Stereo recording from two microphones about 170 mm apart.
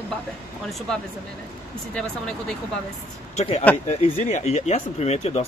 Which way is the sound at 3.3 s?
40° left (ahead or behind).